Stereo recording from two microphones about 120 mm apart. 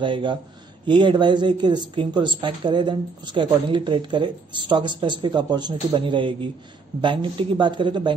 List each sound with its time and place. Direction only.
0.0 s speech: 40° right (ahead or behind)